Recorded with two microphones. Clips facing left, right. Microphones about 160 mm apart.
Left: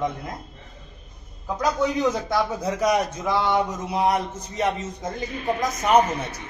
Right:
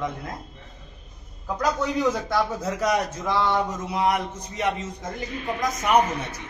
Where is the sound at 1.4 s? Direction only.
10° left (ahead or behind).